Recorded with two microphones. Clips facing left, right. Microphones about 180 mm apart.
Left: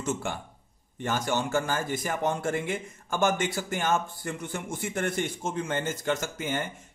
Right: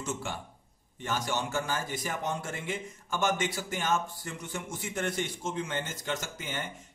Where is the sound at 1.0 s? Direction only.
50° left (ahead or behind).